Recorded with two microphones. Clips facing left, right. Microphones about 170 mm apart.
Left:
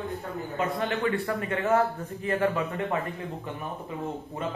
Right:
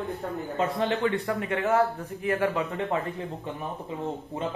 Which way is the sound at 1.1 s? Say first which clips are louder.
Right 1 dB; 15° right (ahead or behind).